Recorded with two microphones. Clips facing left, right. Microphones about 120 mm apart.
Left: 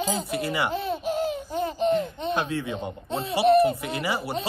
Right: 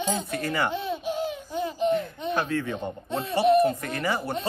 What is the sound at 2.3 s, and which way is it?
Speech, 15° left (ahead or behind).